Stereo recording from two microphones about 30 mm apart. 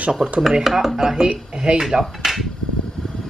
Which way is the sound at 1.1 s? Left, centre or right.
Right.